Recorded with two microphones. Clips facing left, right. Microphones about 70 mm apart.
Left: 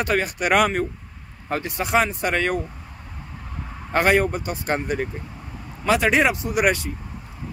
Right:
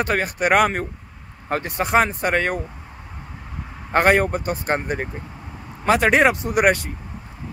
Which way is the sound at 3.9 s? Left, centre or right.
Right.